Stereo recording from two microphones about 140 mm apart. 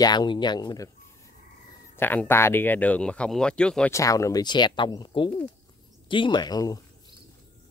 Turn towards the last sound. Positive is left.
turn(degrees=25)  # may be behind; listen again after turning